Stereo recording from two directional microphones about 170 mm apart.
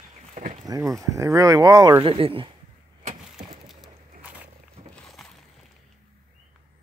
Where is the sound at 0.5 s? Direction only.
20° right (ahead or behind).